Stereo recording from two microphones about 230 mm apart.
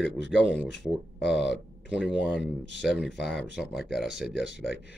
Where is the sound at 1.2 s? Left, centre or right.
Left.